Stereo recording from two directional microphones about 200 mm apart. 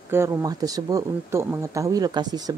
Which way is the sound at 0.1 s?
15° right (ahead or behind).